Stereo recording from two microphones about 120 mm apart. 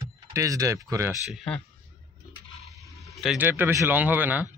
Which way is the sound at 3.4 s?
20° right (ahead or behind).